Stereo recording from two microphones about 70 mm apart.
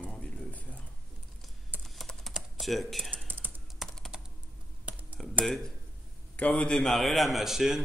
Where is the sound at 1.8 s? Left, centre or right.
Centre.